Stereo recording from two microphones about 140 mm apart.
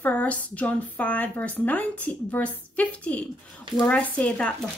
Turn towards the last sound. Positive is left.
turn(degrees=10)  # may be behind; listen again after turning